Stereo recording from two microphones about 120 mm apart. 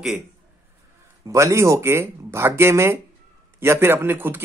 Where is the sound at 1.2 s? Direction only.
25° right (ahead or behind).